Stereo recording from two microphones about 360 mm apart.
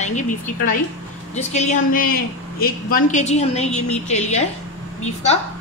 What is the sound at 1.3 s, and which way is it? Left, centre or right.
A woman's voice, centre.